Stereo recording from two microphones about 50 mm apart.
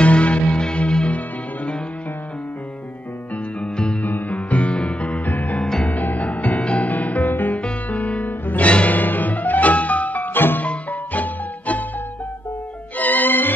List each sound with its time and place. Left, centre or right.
0.0 s music: left
3.6 s music: centre
4.0 s music: left
5.6 s music: centre
5.9 s music: left
7.6 s music: left
10.6 s music: left
12.9 s music: left